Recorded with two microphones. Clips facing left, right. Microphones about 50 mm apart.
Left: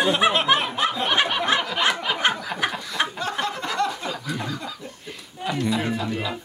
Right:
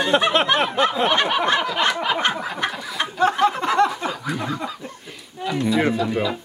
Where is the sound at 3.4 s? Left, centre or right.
Right.